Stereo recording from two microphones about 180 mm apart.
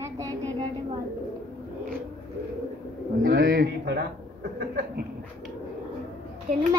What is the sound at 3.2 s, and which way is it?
Pigeon, 55° right (ahead or behind).